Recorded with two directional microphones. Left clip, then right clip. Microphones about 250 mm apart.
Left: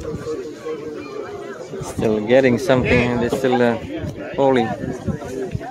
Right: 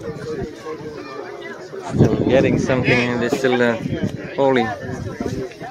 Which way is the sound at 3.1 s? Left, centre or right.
Centre.